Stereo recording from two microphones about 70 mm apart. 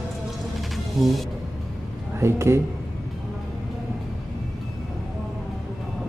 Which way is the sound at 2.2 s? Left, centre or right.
Right.